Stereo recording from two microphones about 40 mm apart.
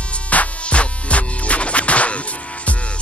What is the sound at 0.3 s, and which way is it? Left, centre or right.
Music, left.